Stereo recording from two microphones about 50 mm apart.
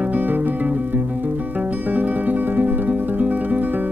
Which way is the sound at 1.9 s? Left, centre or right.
Right.